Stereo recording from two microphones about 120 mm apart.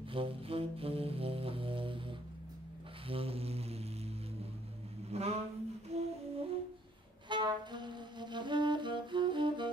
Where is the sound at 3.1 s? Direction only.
55° right (ahead or behind).